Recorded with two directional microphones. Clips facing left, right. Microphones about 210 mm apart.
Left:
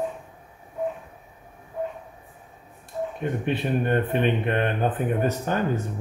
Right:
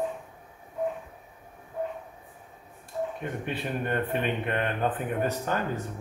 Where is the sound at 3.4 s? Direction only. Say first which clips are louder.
Left 7 dB; 25° left (ahead or behind).